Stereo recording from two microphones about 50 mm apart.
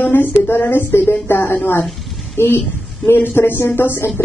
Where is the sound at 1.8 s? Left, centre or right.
Centre.